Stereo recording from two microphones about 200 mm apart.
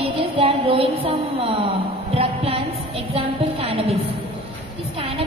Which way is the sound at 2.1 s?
30° right (ahead or behind).